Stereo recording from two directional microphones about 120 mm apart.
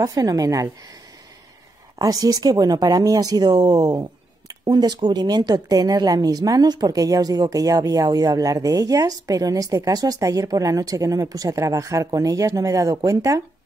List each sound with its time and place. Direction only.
0.0 s speech: 30° right (ahead or behind)
2.0 s speech: 30° right (ahead or behind)